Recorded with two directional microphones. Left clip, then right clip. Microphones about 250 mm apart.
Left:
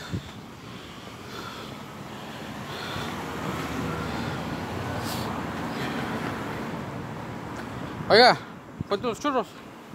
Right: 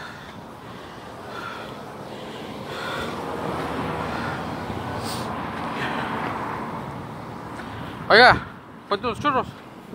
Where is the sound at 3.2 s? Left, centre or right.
Left.